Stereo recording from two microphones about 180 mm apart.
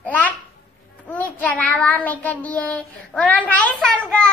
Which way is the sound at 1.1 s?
10° left (ahead or behind).